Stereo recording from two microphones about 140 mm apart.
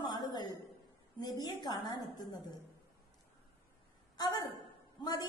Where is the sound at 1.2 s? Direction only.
30° left (ahead or behind).